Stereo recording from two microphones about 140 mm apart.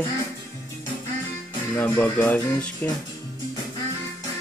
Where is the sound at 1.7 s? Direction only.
15° left (ahead or behind).